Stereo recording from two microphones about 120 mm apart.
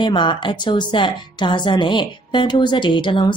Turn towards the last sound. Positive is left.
turn(degrees=40)  # may be behind; listen again after turning